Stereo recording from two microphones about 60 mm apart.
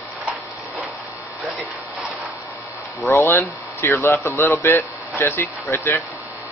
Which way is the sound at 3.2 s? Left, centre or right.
Left.